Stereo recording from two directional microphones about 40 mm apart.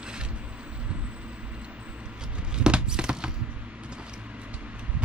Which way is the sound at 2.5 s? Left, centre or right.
Right.